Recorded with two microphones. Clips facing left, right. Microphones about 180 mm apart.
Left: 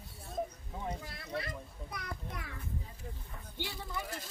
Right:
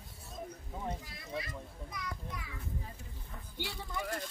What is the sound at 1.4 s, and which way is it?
Speech, 60° left (ahead or behind).